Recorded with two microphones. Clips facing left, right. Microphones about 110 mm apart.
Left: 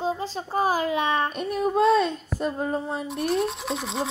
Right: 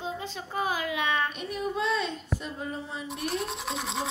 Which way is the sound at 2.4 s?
45° left (ahead or behind).